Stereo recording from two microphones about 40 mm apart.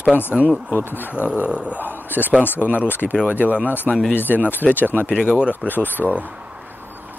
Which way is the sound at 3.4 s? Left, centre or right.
Right.